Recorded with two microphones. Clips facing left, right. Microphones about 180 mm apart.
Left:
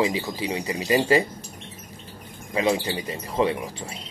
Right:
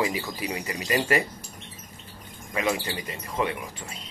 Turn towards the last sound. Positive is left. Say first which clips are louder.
# left 5 dB
turn(degrees=30)  # may be behind; listen again after turning